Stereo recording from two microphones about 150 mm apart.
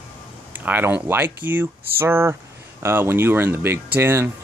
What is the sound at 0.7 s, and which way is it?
Speech, 10° right (ahead or behind).